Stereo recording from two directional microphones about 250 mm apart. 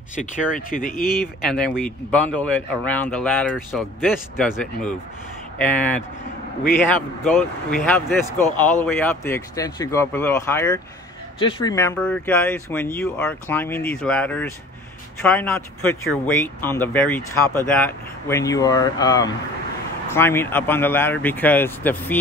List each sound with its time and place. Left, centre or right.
0.1 s speech: left
1.4 s speech: centre
7.2 s speech: centre